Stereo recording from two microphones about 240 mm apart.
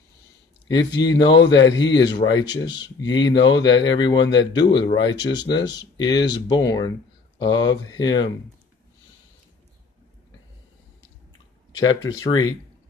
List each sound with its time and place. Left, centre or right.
0.7 s speech: centre
11.7 s speech: left
12.2 s speech: centre